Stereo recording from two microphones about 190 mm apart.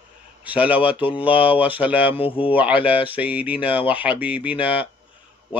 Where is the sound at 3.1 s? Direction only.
5° right (ahead or behind).